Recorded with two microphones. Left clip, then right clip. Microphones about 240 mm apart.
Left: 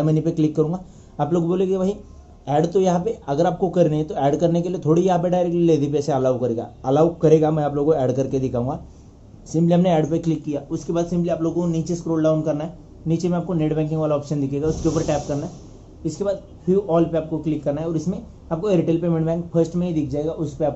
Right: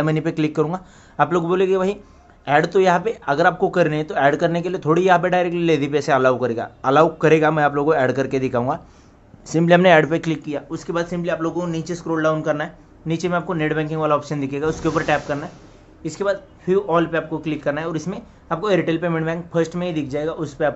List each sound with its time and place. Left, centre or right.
0.0 s a man's voice: right
9.5 s a man's voice: right